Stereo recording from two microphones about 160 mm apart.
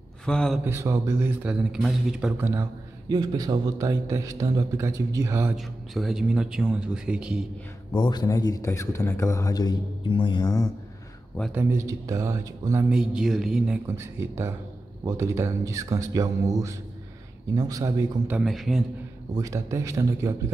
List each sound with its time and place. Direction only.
0.2 s a man's voice: 5° left (ahead or behind)
0.7 s a man's voice: 20° right (ahead or behind)
3.1 s a man's voice: 25° right (ahead or behind)
5.6 s speech: centre (ahead or behind)
7.9 s a man's voice: 25° left (ahead or behind)
11.5 s a man's voice: 20° right (ahead or behind)
12.9 s speech: 5° right (ahead or behind)
13.8 s a man's voice: 15° right (ahead or behind)
18.4 s speech: centre (ahead or behind)
19.3 s a man's voice: 20° right (ahead or behind)